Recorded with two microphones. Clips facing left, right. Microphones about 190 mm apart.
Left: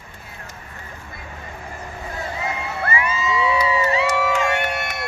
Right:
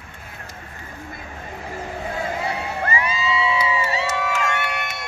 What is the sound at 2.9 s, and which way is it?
Crowd, 30° right (ahead or behind).